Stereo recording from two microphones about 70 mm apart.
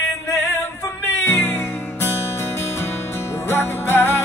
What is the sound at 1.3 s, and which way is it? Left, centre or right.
Music, left.